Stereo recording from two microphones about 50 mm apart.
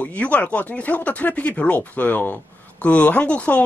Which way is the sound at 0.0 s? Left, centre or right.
Left.